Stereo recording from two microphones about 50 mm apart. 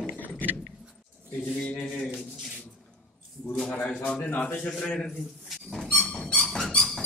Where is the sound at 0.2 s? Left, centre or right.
Left.